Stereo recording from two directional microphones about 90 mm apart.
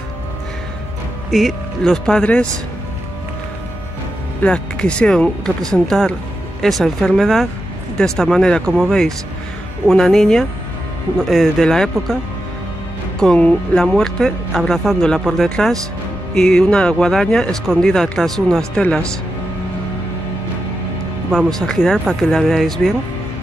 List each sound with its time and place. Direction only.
1.3 s speech: centre (ahead or behind)
4.4 s speech: 10° left (ahead or behind)
13.2 s speech: 10° left (ahead or behind)
21.5 s speech: 5° left (ahead or behind)